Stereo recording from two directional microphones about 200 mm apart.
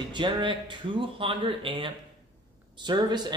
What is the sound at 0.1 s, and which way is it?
A man's voice, 25° right (ahead or behind).